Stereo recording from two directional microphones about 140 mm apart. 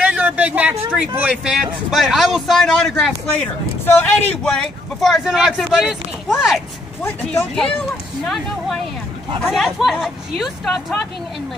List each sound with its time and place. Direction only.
0.0 s speech: 10° right (ahead or behind)
9.4 s speech: centre (ahead or behind)